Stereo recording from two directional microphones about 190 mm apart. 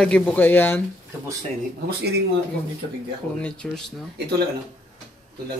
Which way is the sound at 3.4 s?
5° left (ahead or behind).